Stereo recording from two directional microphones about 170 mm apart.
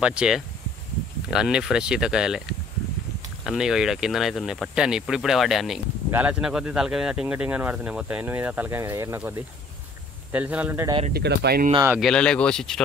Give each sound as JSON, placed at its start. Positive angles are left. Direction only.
{"t": 0.0, "sound": "speech", "side_deg": -5}
{"t": 3.4, "sound": "speech", "side_deg": -5}
{"t": 10.3, "sound": "speech", "side_deg": -10}
{"t": 11.1, "sound": "speech", "side_deg": -70}
{"t": 12.0, "sound": "speech", "side_deg": 5}